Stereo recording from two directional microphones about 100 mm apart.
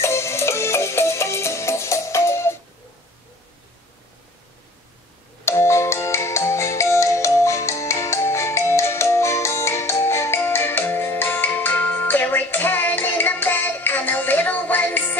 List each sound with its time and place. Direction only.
0.0 s music: 30° left (ahead or behind)
5.4 s ringtone: 25° left (ahead or behind)